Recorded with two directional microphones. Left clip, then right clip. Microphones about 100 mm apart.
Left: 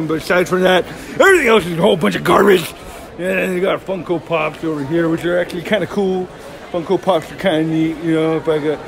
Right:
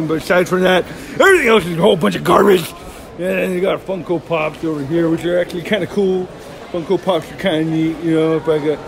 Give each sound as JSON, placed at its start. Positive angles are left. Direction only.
{"t": 0.1, "sound": "a man's voice", "side_deg": -10}
{"t": 1.1, "sound": "a man's voice", "side_deg": 15}
{"t": 3.2, "sound": "speech", "side_deg": 35}
{"t": 5.1, "sound": "speech", "side_deg": 60}
{"t": 6.9, "sound": "speech", "side_deg": 65}
{"t": 8.1, "sound": "a man's voice", "side_deg": 35}